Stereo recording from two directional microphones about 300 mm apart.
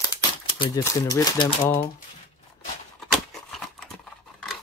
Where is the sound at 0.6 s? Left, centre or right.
Centre.